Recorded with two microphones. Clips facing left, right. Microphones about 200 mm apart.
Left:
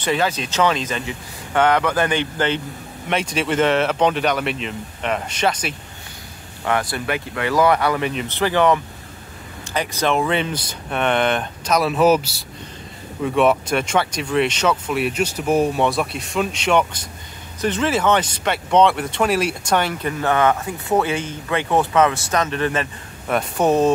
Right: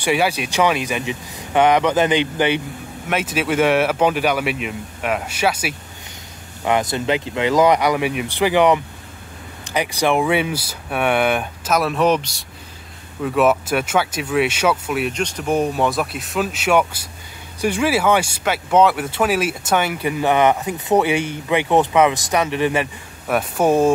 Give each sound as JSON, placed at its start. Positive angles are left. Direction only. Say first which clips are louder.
{"t": 0.0, "sound": "speech", "louder": "right 2 dB", "side_deg": -10}
{"t": 6.6, "sound": "speech", "louder": "right 3 dB", "side_deg": -20}